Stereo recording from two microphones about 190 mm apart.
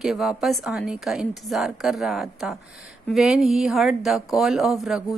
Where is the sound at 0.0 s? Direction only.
Centre (ahead or behind).